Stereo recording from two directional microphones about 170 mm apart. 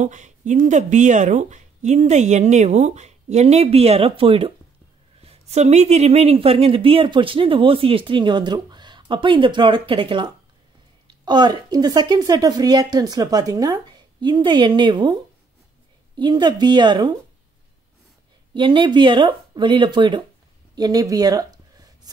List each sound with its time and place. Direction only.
0.0 s a woman's voice: 45° right (ahead or behind); by 15.1 s 30° right (ahead or behind)
16.2 s a woman's voice: 25° right (ahead or behind)
18.5 s a woman's voice: 30° right (ahead or behind)
20.7 s a sound: 20° right (ahead or behind)